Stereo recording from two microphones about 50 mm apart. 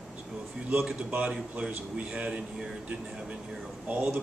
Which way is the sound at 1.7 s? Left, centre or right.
Right.